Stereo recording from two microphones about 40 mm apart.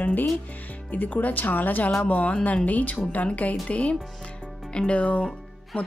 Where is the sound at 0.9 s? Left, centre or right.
Left.